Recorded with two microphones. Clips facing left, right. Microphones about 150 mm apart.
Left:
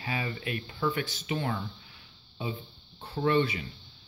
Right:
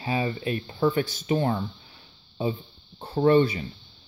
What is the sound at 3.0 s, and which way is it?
Speech, 40° right (ahead or behind).